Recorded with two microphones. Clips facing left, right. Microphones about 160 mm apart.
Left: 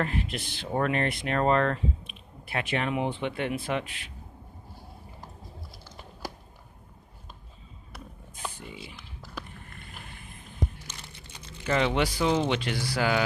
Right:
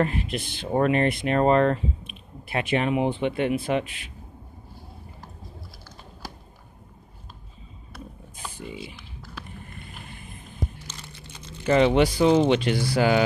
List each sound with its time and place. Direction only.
0.0 s speech: 20° right (ahead or behind)
8.5 s speech: 10° right (ahead or behind)
11.6 s speech: 25° right (ahead or behind)